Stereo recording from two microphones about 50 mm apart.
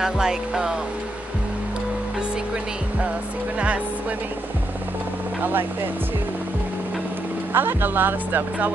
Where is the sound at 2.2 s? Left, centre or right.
Right.